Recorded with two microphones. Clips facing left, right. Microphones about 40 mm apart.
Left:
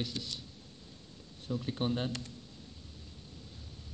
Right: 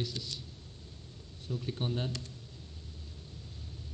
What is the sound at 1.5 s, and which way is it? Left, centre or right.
Speech, left.